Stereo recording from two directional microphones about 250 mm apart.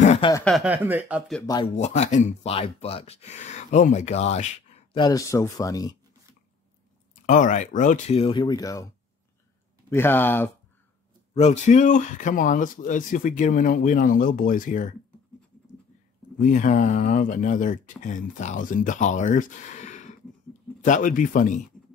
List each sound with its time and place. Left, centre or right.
0.0 s a sound: left
0.3 s speech: centre
1.4 s speech: centre
1.8 s speech: left
7.2 s speech: left; by 8.8 s centre
9.8 s speech: centre
11.3 s speech: left
16.3 s speech: left